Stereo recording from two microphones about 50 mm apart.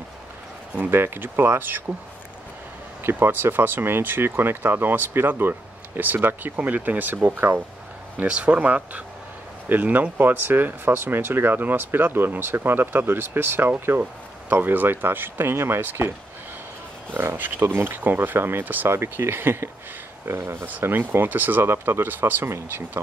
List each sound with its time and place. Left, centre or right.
0.7 s speech: right
3.0 s speech: right
8.3 s speech: right
17.1 s speech: right
18.9 s speech: right